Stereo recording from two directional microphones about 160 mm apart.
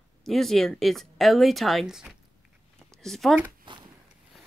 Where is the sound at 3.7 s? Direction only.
30° right (ahead or behind).